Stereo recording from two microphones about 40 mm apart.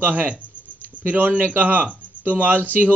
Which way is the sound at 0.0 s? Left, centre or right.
Right.